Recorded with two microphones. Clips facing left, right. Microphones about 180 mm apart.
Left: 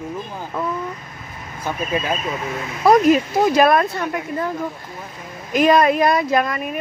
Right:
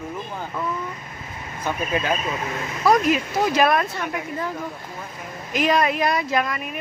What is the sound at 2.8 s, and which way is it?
Speech, 40° left (ahead or behind).